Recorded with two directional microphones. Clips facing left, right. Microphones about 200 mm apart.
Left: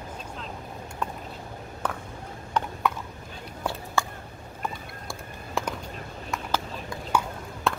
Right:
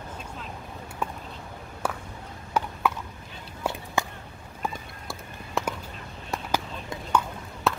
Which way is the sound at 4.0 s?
15° right (ahead or behind).